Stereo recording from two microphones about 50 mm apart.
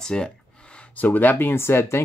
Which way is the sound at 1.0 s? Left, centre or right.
Left.